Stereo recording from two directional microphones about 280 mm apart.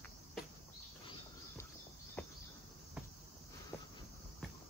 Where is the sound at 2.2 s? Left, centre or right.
Centre.